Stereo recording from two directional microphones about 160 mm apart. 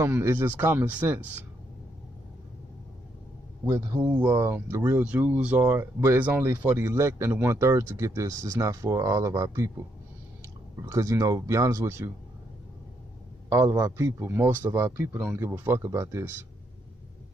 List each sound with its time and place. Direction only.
0.0 s speech: 15° right (ahead or behind)
3.6 s speech: 15° right (ahead or behind)
10.9 s speech: 20° right (ahead or behind)
13.5 s speech: 20° right (ahead or behind)